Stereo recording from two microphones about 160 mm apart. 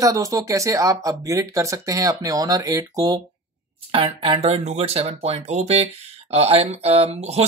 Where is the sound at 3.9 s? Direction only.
35° right (ahead or behind).